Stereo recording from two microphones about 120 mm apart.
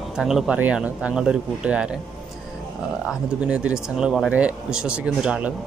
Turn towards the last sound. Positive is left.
turn(degrees=-10)  # may be behind; listen again after turning